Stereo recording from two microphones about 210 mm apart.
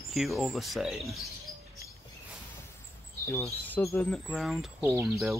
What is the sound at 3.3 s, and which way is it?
Speech, 10° left (ahead or behind).